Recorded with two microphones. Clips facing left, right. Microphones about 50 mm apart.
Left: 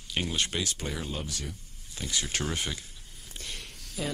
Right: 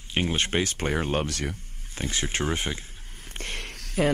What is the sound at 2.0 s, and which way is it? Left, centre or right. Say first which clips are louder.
Speech: right 4 dB; right.